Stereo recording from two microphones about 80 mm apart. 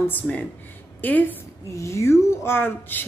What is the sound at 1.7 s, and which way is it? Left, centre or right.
Speech, left.